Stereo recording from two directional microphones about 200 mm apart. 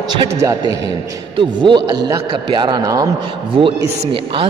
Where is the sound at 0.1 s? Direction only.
20° right (ahead or behind).